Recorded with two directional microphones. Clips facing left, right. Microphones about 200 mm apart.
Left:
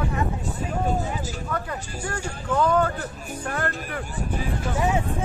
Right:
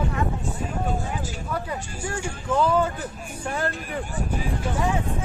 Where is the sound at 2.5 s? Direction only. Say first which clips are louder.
Even; 10° right (ahead or behind).